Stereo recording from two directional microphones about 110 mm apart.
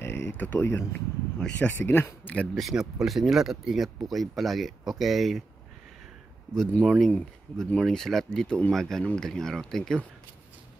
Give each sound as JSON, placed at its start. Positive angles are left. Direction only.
{"t": 0.0, "sound": "a sound", "side_deg": 20}
{"t": 0.7, "sound": "speech", "side_deg": 25}
{"t": 2.5, "sound": "speech", "side_deg": 0}
{"t": 6.5, "sound": "speech", "side_deg": 5}